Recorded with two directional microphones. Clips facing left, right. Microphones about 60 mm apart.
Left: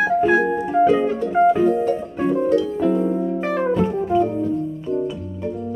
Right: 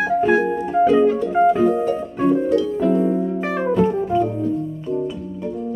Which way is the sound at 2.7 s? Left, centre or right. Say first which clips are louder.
Right 1 dB; centre.